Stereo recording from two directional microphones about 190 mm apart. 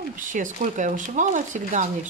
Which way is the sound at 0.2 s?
40° right (ahead or behind).